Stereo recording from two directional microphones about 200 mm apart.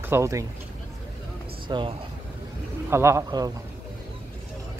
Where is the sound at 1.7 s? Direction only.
25° right (ahead or behind).